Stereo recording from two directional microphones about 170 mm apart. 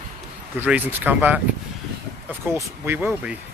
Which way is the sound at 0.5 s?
10° right (ahead or behind).